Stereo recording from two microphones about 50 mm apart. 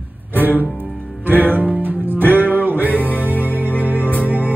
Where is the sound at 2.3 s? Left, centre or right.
Right.